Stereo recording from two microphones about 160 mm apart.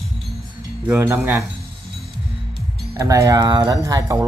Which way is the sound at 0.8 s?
10° right (ahead or behind).